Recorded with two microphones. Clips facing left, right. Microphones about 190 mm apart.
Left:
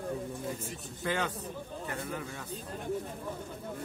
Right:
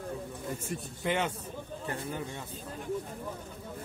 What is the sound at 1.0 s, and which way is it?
Speech, 20° right (ahead or behind).